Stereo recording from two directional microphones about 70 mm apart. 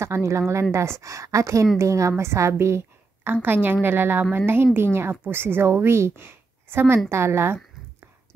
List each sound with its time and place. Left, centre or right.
0.0 s a woman's voice: right
3.4 s a woman's voice: right